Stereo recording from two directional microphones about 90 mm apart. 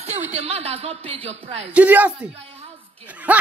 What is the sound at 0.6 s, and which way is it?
Speech, 90° right.